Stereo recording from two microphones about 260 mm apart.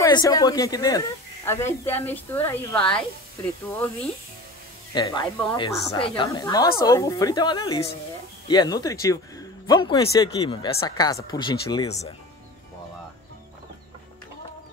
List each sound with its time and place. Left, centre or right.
0.0 s a woman's voice: centre
4.9 s a woman's voice: centre